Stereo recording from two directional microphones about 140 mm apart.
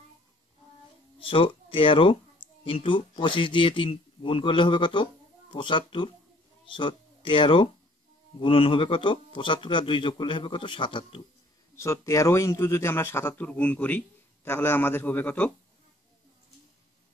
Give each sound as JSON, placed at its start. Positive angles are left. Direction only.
{"t": 1.2, "sound": "speech", "side_deg": 40}
{"t": 11.7, "sound": "speech", "side_deg": 20}